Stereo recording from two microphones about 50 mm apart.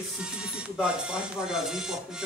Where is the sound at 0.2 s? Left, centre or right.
Centre.